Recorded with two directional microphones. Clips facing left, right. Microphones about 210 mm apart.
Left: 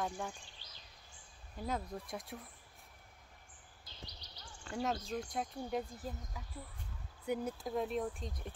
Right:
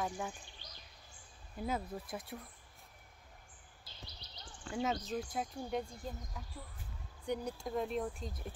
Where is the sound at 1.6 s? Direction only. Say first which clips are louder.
Right 1 dB; 5° right (ahead or behind).